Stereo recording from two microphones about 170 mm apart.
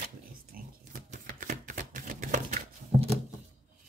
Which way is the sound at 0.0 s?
60° right (ahead or behind).